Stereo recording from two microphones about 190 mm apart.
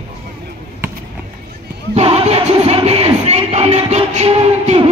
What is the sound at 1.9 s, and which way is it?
Music, 30° right (ahead or behind).